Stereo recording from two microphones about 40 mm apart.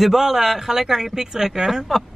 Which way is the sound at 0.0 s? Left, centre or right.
Centre.